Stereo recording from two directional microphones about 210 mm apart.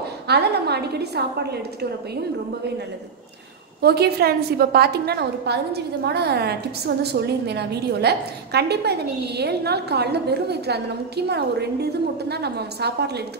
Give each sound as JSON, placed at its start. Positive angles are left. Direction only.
{"t": 0.3, "sound": "a woman's voice", "side_deg": -50}
{"t": 3.8, "sound": "a woman's voice", "side_deg": -50}